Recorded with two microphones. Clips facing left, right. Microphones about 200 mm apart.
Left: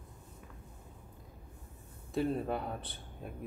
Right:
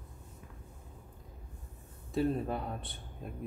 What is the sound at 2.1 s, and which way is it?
Speech, centre (ahead or behind).